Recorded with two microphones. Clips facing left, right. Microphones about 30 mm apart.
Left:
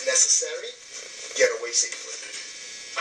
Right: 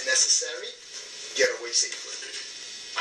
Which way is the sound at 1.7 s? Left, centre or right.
Right.